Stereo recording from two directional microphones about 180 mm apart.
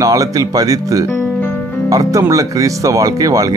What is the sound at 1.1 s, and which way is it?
Music, 10° left (ahead or behind).